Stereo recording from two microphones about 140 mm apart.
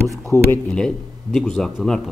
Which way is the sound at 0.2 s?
20° left (ahead or behind).